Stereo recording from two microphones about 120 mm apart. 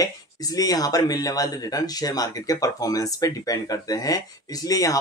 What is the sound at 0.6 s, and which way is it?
Speech, 30° left (ahead or behind).